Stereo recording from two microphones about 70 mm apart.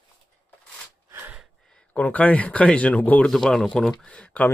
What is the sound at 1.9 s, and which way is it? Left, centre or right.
Speech, left.